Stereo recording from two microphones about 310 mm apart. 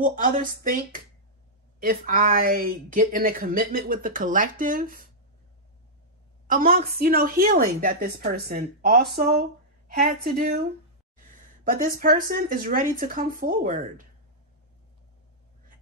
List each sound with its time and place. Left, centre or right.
0.0 s a woman's voice: right
6.4 s a woman's voice: right